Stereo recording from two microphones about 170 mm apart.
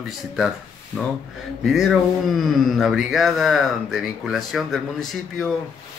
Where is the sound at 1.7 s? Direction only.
Centre (ahead or behind).